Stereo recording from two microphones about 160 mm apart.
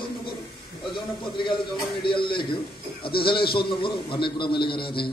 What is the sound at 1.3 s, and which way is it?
A man's voice, 30° left (ahead or behind).